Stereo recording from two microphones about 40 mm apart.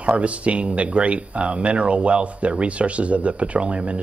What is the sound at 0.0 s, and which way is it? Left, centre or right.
Speech, right.